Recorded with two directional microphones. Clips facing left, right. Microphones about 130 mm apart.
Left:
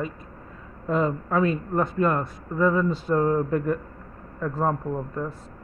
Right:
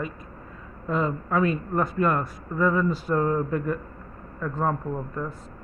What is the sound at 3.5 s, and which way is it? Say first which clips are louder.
Speech: left 3 dB; 45° left (ahead or behind).